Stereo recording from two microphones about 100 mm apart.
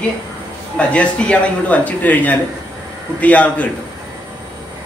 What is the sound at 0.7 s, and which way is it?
Speech, 10° left (ahead or behind).